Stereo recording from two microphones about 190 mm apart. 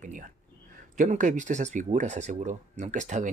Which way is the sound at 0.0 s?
45° right (ahead or behind).